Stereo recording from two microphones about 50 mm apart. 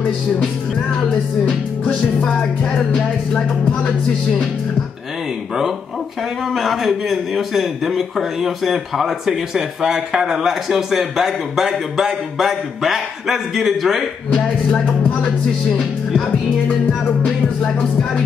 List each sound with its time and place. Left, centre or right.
0.0 s music: centre
1.5 s music: left
2.2 s music: centre
6.5 s a man's voice: centre
14.3 s music: centre
15.0 s speech: left